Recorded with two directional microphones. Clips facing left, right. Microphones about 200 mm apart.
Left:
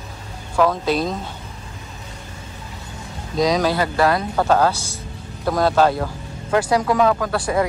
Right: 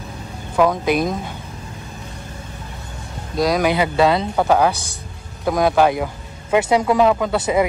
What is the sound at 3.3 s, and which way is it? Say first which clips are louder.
Speech: even; 5° right (ahead or behind).